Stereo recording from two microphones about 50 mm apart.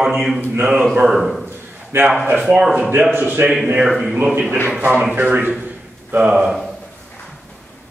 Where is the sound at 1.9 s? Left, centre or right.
Right.